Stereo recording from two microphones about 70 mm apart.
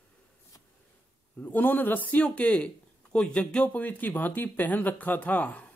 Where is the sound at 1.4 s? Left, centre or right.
Left.